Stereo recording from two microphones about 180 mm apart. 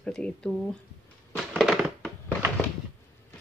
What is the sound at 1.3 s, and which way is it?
Crushing, centre (ahead or behind).